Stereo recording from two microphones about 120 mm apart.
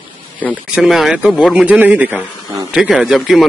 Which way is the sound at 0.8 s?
Centre (ahead or behind).